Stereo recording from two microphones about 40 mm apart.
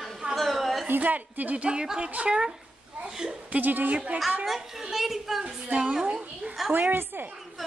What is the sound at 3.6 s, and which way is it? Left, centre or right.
Speech, right.